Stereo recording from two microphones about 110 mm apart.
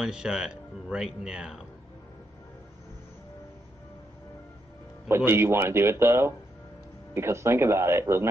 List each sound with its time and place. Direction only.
0.0 s speech: 5° right (ahead or behind)
5.0 s speech: 20° right (ahead or behind)